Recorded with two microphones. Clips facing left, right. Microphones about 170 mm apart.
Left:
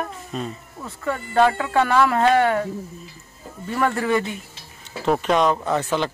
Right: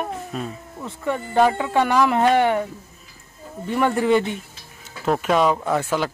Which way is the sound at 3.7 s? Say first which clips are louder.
Right 3 dB; 20° right (ahead or behind).